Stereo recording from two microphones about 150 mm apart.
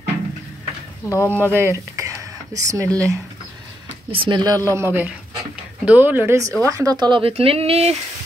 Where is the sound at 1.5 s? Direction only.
15° right (ahead or behind).